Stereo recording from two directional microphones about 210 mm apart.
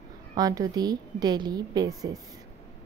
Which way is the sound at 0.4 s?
15° right (ahead or behind).